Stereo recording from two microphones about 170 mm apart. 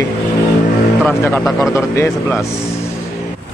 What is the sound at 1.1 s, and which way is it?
Speech, 10° left (ahead or behind).